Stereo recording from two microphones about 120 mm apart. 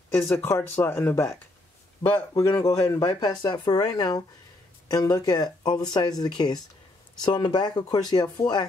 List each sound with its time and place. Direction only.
0.4 s speech: 20° left (ahead or behind)